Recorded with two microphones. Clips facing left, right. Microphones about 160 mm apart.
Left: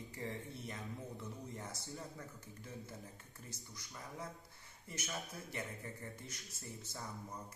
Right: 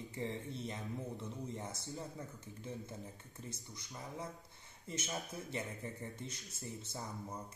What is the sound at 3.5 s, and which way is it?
A man's voice, 20° right (ahead or behind).